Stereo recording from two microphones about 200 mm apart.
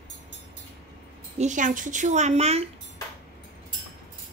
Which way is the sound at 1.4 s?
40° right (ahead or behind).